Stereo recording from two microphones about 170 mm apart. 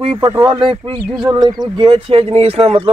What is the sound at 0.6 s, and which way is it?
A man's voice, 30° right (ahead or behind).